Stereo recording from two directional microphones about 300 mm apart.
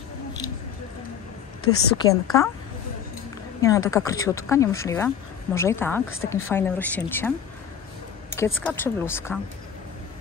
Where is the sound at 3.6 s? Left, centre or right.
Centre.